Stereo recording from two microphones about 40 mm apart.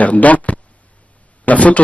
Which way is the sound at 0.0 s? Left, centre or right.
Left.